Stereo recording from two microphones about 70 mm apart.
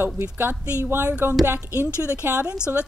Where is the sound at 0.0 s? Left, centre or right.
Right.